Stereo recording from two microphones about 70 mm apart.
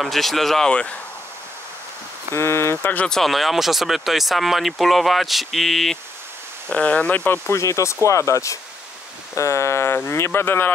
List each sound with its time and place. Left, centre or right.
0.0 s speech: centre
0.7 s speech: centre
2.3 s speech: left
3.1 s speech: centre
6.7 s speech: centre
7.4 s speech: left